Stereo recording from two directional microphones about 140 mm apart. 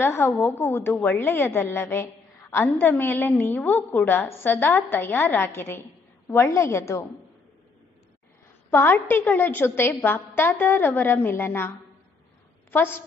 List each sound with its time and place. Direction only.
0.0 s a woman's voice: 20° left (ahead or behind)
8.6 s a woman's voice: 15° left (ahead or behind)
12.7 s a woman's voice: 15° left (ahead or behind)